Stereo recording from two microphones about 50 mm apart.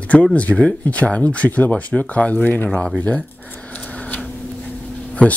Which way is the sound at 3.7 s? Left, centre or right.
Left.